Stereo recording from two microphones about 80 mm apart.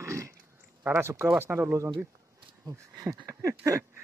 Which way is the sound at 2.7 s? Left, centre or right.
Right.